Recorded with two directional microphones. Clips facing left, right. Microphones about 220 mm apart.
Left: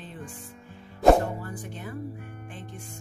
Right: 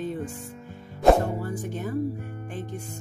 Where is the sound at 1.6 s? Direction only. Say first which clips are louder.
Right 7 dB; 45° right (ahead or behind).